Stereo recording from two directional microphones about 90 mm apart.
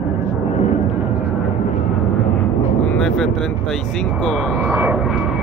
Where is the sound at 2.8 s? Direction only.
10° left (ahead or behind).